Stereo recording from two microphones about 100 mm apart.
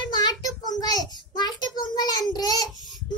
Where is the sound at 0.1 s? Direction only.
45° left (ahead or behind).